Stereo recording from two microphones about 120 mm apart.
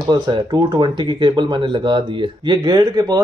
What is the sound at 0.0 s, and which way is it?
Speech, 35° right (ahead or behind).